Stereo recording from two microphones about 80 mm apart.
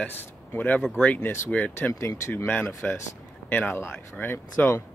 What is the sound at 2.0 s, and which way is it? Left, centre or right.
Speech, left.